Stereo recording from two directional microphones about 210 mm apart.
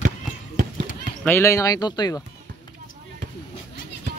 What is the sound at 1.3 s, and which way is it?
Speech, 10° left (ahead or behind).